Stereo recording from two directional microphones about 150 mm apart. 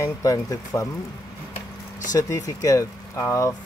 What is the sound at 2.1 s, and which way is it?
Speech, 25° left (ahead or behind).